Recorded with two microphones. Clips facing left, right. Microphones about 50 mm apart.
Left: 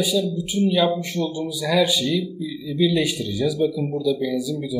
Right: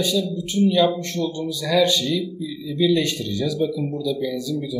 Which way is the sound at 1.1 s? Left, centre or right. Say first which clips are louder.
Even; centre.